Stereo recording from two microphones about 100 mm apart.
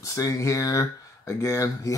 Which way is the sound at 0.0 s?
35° left (ahead or behind).